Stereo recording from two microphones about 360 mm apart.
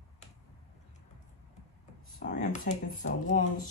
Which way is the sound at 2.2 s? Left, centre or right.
Left.